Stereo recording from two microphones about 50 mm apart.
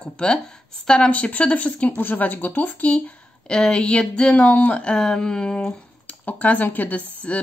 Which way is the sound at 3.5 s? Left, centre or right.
Centre.